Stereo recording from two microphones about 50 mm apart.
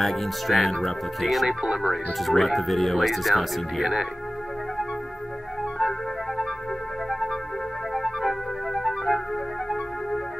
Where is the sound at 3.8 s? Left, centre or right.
Centre.